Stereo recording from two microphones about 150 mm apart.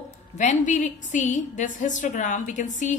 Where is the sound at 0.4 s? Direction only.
55° left (ahead or behind).